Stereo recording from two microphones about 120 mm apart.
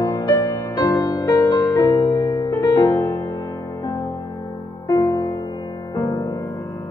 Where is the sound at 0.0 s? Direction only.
30° left (ahead or behind).